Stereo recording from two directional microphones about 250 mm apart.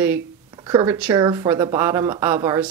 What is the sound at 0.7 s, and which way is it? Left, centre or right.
A woman's voice, centre.